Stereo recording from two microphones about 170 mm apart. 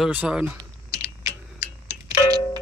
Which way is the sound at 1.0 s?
15° right (ahead or behind).